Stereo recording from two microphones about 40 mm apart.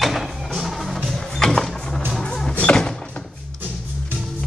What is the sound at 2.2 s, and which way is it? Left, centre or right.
Music, centre.